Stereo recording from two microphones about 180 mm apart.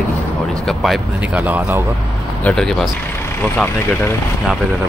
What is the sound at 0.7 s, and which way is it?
Speech, centre (ahead or behind).